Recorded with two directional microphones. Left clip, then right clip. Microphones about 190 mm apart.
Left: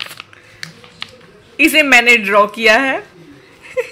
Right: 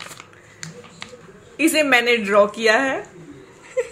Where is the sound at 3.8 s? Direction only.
20° left (ahead or behind).